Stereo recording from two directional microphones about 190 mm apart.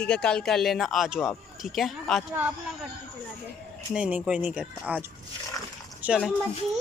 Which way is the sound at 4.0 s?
5° right (ahead or behind).